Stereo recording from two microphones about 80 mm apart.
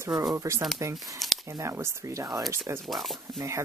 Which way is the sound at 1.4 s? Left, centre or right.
Right.